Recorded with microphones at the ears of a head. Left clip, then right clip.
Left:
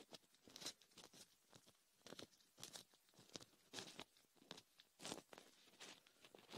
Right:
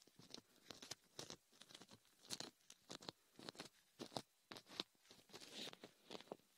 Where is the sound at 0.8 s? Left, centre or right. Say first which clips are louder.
Right 9 dB; right.